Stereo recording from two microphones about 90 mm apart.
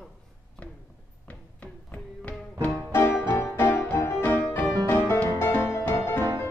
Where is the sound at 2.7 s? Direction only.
30° left (ahead or behind).